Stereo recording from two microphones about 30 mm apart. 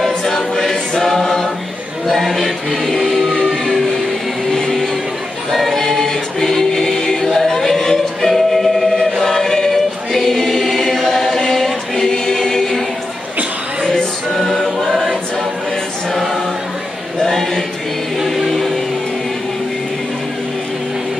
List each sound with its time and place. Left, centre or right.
0.0 s choir: centre
2.0 s a capella: centre
3.1 s music: centre
3.4 s vehicle: centre
5.5 s choir: centre
14.3 s choir: centre
17.2 s choir: centre